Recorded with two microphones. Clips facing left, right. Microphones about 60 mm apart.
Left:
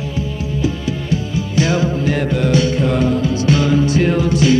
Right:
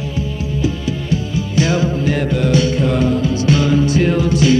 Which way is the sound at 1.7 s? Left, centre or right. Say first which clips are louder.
Even; left.